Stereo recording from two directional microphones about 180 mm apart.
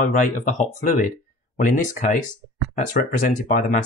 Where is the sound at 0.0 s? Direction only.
45° left (ahead or behind).